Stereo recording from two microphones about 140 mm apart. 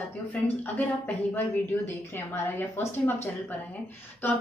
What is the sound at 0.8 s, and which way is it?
Speech, 10° left (ahead or behind).